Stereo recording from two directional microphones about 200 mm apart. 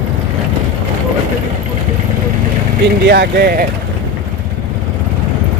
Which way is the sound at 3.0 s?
55° right (ahead or behind).